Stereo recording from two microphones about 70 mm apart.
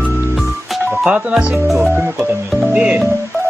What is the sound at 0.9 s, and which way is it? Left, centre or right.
Speech, centre.